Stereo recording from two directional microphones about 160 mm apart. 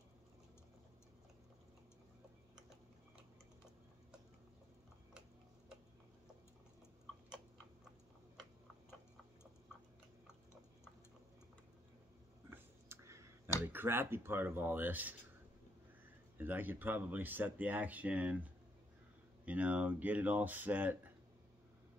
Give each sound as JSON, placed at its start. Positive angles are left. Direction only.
{"t": 12.4, "sound": "a sound", "side_deg": -15}
{"t": 13.7, "sound": "speech", "side_deg": -15}
{"t": 16.3, "sound": "speech", "side_deg": -10}